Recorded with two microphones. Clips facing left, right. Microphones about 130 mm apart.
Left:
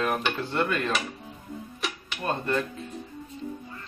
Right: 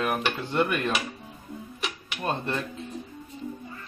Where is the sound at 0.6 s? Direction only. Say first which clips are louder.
Even; 15° right (ahead or behind).